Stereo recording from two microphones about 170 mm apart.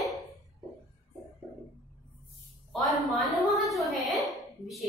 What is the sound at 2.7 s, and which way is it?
Speech, centre (ahead or behind).